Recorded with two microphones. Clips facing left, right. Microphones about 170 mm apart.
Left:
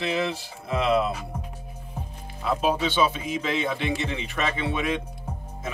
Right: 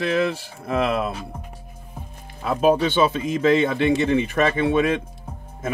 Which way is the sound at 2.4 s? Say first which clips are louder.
Right 6 dB; 50° right (ahead or behind).